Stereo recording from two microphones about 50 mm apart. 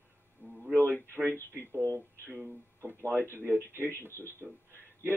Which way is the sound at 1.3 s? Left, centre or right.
Left.